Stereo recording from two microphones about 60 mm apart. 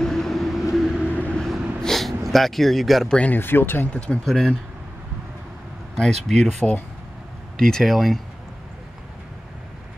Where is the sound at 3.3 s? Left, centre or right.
Left.